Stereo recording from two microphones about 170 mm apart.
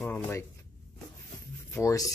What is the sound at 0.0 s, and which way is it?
Speech, 10° left (ahead or behind).